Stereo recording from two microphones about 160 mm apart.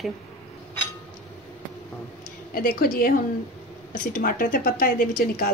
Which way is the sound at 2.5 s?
65° left (ahead or behind).